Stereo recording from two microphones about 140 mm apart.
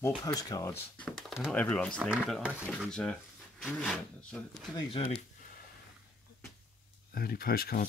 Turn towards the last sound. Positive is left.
turn(degrees=90)